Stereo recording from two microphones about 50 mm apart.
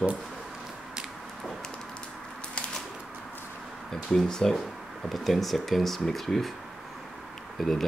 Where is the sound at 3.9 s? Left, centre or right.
Centre.